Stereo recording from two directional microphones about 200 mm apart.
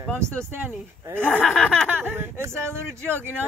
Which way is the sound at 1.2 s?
5° left (ahead or behind).